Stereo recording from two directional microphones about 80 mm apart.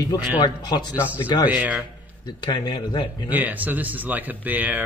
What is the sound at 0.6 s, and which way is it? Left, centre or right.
Speech, left.